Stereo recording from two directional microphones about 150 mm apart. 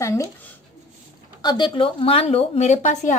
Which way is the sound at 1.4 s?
30° left (ahead or behind).